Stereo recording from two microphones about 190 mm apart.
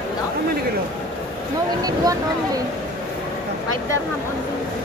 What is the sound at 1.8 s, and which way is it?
Speech, 20° right (ahead or behind).